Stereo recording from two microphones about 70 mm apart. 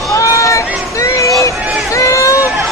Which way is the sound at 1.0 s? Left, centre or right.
Left.